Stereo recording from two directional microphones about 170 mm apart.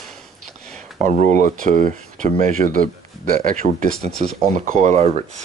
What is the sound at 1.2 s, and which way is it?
Speech, 45° right (ahead or behind).